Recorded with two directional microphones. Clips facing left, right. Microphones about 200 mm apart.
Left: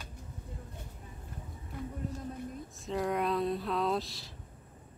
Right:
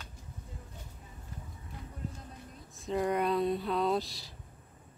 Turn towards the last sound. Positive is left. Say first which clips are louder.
# right 2 dB
turn(degrees=0)  # may be behind; listen again after turning